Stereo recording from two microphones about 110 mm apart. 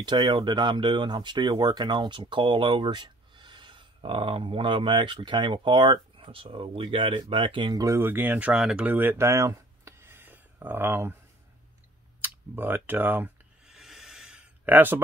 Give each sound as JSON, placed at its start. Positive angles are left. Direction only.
{"t": 0.0, "sound": "speech", "side_deg": -45}
{"t": 7.7, "sound": "speech", "side_deg": -25}
{"t": 12.2, "sound": "speech", "side_deg": -15}
{"t": 13.7, "sound": "a sound", "side_deg": -5}